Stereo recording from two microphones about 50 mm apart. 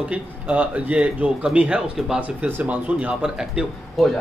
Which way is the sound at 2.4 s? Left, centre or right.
Right.